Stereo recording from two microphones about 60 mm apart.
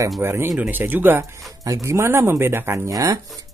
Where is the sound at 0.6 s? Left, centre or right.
Right.